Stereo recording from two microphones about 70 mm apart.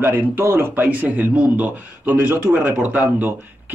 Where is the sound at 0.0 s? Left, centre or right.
Right.